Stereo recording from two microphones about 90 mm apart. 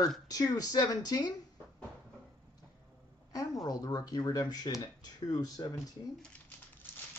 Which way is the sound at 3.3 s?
40° left (ahead or behind).